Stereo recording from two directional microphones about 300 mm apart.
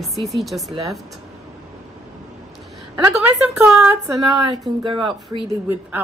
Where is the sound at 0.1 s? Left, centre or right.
Centre.